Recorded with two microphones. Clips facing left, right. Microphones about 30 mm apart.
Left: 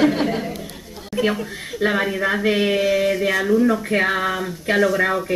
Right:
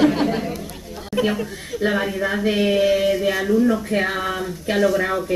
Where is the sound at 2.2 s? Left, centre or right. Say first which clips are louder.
Left 1 dB; left.